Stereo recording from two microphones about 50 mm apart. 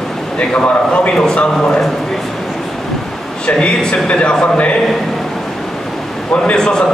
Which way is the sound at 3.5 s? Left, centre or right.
Centre.